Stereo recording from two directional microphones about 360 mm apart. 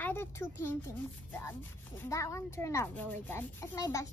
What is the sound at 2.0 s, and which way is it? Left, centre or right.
Speech, centre.